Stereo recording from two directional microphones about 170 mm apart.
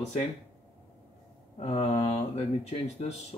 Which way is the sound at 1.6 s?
40° left (ahead or behind).